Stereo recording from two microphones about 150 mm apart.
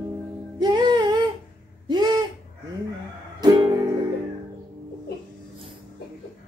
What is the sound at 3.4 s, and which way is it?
Music, 25° right (ahead or behind).